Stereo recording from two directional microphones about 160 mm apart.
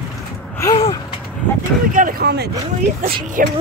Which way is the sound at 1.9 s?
60° right (ahead or behind).